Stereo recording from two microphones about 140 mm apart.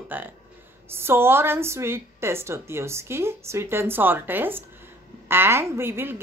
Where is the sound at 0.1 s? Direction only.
10° right (ahead or behind).